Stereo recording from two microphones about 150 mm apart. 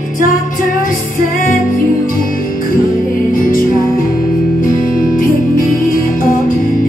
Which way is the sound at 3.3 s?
65° left (ahead or behind).